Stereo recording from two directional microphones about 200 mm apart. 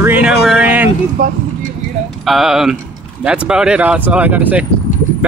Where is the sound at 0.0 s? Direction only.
5° right (ahead or behind).